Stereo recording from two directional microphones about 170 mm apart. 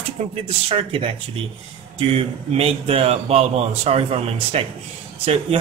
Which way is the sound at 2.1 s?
35° right (ahead or behind).